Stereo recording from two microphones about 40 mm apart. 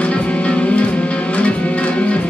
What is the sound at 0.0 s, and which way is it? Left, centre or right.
Music, left.